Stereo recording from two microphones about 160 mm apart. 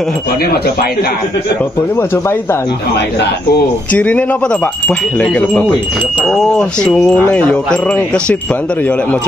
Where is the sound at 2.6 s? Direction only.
90° left.